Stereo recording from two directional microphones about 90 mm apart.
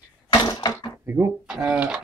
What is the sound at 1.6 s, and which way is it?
Speech, 15° right (ahead or behind).